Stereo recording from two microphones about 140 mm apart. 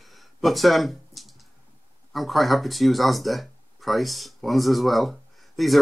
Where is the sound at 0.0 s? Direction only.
Centre (ahead or behind).